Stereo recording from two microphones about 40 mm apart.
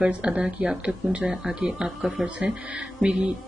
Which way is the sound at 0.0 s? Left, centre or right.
Right.